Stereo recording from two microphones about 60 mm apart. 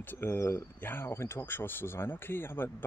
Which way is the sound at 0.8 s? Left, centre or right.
Left.